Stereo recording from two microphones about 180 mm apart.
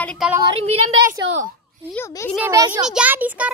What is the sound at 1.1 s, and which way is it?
Speech, 45° right (ahead or behind).